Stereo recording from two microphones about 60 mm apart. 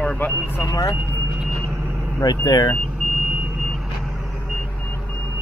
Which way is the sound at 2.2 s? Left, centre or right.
Left.